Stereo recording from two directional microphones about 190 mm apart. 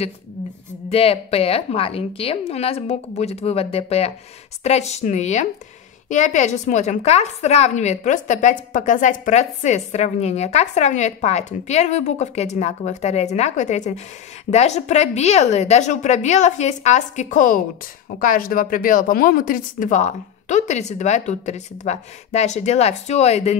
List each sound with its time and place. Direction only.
0.8 s a woman's voice: 30° left (ahead or behind)